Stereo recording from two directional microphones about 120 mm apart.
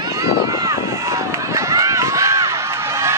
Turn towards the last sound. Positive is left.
turn(degrees=-25)  # may be behind; listen again after turning